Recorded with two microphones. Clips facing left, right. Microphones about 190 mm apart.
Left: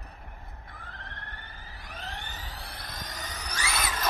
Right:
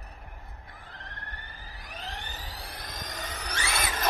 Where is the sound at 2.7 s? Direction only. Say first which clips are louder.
Right 1 dB; 45° right (ahead or behind).